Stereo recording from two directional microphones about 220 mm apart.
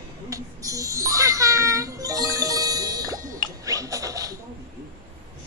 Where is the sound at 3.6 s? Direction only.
15° right (ahead or behind).